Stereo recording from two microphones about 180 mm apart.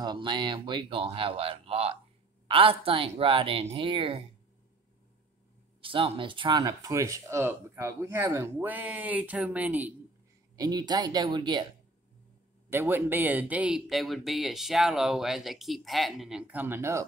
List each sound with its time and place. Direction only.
0.0 s speech: 25° right (ahead or behind)
5.8 s speech: 30° right (ahead or behind); by 9.9 s 10° right (ahead or behind)
10.5 s speech: 20° right (ahead or behind)
12.6 s speech: 10° right (ahead or behind)